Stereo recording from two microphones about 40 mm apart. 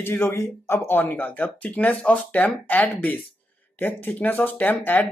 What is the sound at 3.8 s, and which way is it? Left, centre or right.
Speech, left.